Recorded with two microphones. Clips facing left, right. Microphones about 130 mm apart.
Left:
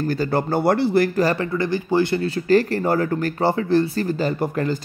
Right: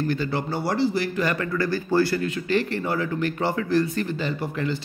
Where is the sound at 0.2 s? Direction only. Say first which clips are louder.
Left 6 dB; 50° left (ahead or behind).